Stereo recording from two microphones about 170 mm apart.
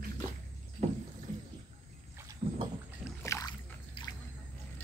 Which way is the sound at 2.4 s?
30° right (ahead or behind).